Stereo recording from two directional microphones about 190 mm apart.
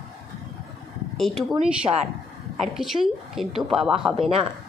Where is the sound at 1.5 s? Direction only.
35° right (ahead or behind).